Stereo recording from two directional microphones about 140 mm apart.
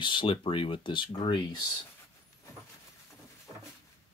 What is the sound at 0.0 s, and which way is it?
Speech, 35° left (ahead or behind).